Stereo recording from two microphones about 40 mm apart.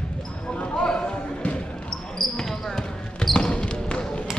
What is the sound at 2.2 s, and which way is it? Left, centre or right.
Basketball bounce, centre.